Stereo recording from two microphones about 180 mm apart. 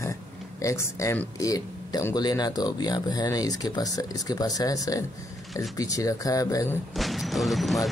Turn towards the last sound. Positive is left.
turn(degrees=0)  # may be behind; listen again after turning